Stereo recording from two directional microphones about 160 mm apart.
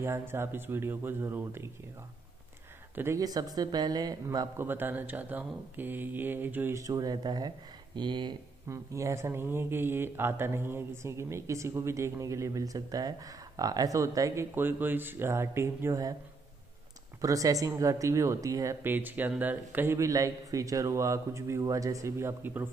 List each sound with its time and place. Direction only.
0.0 s speech: 15° right (ahead or behind)
3.0 s speech: 20° right (ahead or behind)
17.2 s speech: 20° right (ahead or behind)